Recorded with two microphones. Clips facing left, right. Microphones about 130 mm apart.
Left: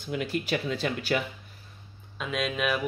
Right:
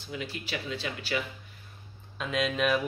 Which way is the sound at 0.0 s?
55° left (ahead or behind).